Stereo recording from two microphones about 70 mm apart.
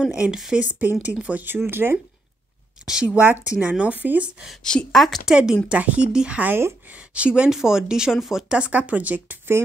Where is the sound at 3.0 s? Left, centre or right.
Right.